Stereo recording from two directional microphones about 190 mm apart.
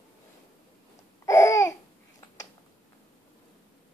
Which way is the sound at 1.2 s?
15° left (ahead or behind).